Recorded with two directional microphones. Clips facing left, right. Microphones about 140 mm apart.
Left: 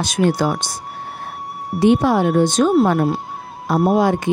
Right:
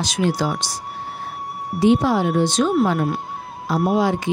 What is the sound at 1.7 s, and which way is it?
A woman's voice, 55° left (ahead or behind).